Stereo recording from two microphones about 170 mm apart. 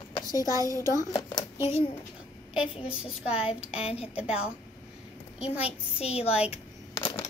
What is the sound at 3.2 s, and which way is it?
A woman's voice, 35° left (ahead or behind).